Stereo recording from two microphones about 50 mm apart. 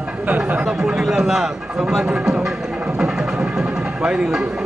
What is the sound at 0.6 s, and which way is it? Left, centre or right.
Speech, centre.